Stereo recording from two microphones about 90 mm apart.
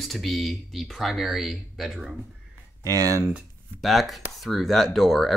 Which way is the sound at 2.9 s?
40° right (ahead or behind).